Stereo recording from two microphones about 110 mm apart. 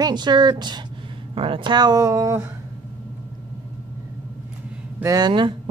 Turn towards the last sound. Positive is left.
turn(degrees=-45)  # may be behind; listen again after turning